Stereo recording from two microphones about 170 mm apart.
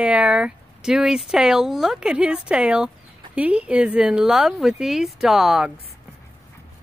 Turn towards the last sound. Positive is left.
turn(degrees=-5)  # may be behind; listen again after turning